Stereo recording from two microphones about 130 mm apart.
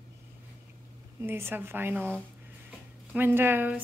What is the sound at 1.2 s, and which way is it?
A woman's voice, 20° right (ahead or behind).